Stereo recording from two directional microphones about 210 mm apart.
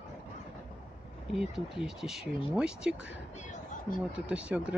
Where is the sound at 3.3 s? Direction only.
35° left (ahead or behind).